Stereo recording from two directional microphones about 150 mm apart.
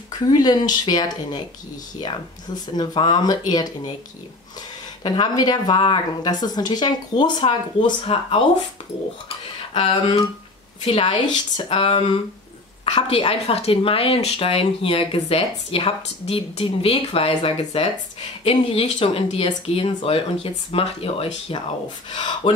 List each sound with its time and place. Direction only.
0.2 s speech: 30° left (ahead or behind)
5.0 s speech: 30° left (ahead or behind)
9.8 s speech: 40° left (ahead or behind)